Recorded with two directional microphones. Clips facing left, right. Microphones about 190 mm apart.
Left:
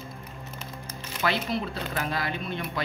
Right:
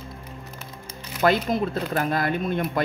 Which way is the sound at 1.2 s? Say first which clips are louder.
Right 7 dB; 45° right (ahead or behind).